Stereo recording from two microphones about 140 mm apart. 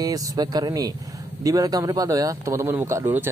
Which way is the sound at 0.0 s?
30° right (ahead or behind).